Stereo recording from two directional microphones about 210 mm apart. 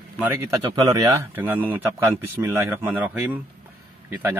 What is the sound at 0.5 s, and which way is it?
A man's voice, 15° right (ahead or behind).